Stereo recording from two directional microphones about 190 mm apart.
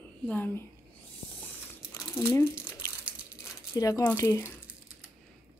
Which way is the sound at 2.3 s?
15° left (ahead or behind).